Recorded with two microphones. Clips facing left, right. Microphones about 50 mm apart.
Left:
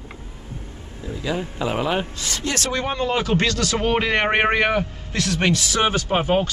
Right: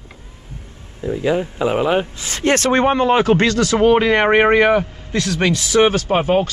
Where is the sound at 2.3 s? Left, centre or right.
Right.